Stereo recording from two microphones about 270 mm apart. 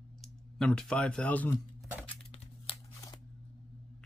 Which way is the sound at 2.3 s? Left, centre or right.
Centre.